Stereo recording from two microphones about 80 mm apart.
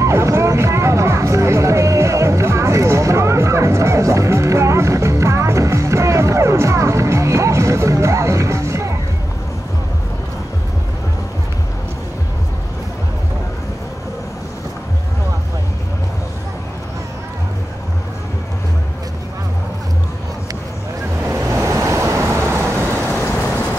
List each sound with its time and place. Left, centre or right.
0.0 s music: right
21.3 s vehicle: right